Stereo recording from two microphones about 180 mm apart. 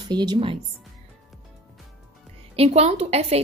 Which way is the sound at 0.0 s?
25° right (ahead or behind).